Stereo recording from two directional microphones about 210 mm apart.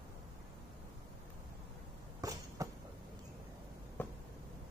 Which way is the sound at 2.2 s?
15° right (ahead or behind).